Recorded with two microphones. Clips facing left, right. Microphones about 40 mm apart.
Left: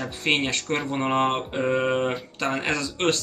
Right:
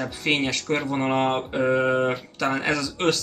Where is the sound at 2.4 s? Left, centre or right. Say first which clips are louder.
Right 2 dB; left.